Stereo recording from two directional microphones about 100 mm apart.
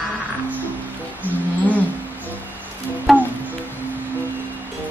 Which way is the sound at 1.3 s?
20° right (ahead or behind).